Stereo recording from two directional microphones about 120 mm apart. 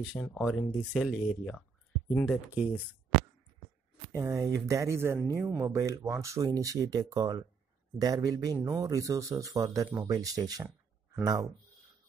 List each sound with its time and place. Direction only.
0.2 s speech: 10° left (ahead or behind)
0.5 s speech: centre (ahead or behind)
2.2 s speech: 10° right (ahead or behind)
4.1 s speech: 25° right (ahead or behind)